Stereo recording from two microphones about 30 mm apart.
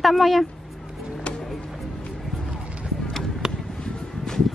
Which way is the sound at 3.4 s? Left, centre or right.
Right.